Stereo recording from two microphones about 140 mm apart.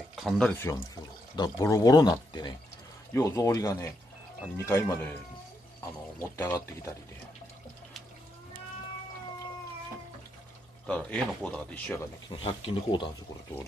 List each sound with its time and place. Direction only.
0.1 s a sound: centre (ahead or behind)
0.5 s speech: 15° left (ahead or behind)
1.3 s speech: 30° left (ahead or behind)
6.3 s speech: 20° left (ahead or behind)
10.9 s speech: 5° left (ahead or behind)
12.3 s speech: 40° left (ahead or behind)